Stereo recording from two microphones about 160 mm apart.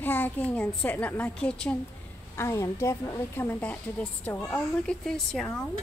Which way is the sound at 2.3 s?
15° left (ahead or behind).